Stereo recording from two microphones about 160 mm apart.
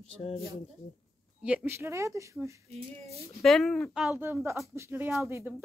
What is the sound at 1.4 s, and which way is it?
Speech, 10° right (ahead or behind).